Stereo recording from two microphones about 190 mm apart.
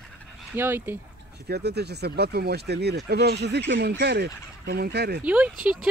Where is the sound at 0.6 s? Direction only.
10° right (ahead or behind).